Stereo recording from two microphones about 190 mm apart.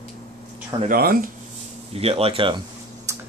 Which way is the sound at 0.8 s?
50° right (ahead or behind).